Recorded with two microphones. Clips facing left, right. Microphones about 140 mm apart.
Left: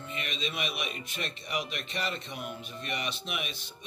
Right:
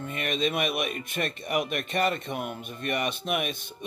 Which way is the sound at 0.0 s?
50° right (ahead or behind).